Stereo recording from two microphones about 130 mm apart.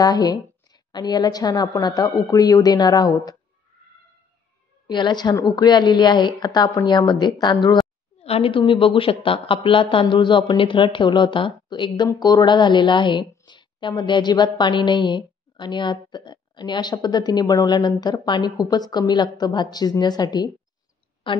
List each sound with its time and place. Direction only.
0.0 s a woman's voice: 30° left (ahead or behind)
4.8 s a woman's voice: 35° left (ahead or behind)
8.2 s a woman's voice: 50° left (ahead or behind); by 20.5 s 30° left (ahead or behind)